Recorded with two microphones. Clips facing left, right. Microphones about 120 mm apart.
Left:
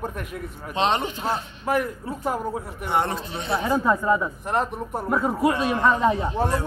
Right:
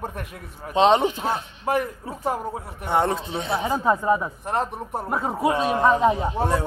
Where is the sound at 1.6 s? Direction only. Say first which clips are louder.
Even; 30° right (ahead or behind).